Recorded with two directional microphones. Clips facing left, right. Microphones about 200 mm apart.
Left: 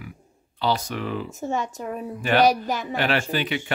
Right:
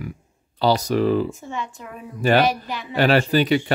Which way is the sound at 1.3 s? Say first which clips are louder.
Left 4 dB; 45° left (ahead or behind).